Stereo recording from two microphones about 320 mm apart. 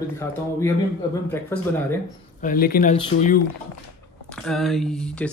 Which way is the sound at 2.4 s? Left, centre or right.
Left.